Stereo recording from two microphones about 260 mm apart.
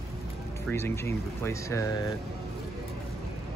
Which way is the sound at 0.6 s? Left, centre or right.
Centre.